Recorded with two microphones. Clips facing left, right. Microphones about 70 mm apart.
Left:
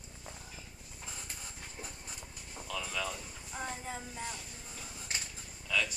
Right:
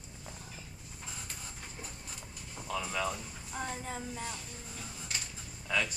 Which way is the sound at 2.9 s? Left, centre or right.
Right.